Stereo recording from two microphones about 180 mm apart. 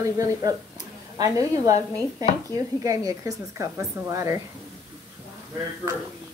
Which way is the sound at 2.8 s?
20° right (ahead or behind).